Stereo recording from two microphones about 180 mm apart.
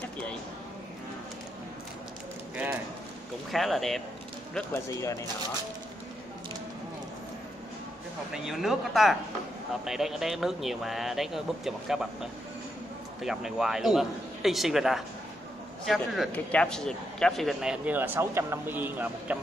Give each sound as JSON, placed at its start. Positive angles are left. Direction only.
{"t": 3.5, "sound": "speech", "side_deg": 0}
{"t": 4.6, "sound": "speech", "side_deg": 15}
{"t": 8.3, "sound": "speech", "side_deg": 0}